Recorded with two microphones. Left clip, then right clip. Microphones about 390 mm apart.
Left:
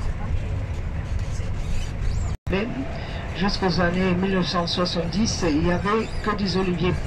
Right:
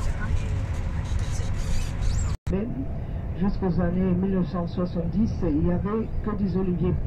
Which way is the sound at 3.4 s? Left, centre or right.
Left.